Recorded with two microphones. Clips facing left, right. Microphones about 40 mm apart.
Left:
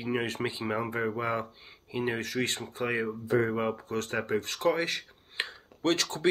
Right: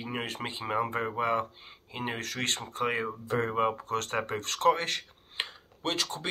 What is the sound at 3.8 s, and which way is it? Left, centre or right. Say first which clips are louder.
Speech: right 1 dB; right.